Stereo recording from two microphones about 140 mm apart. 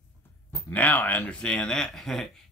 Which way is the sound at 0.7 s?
10° left (ahead or behind).